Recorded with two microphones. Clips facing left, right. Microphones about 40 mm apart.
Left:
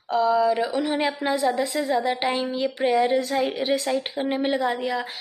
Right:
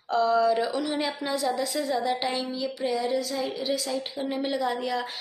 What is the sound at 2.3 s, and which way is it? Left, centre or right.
A woman's voice, left.